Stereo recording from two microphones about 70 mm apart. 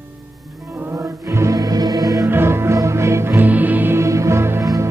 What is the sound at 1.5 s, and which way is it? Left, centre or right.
Music, right.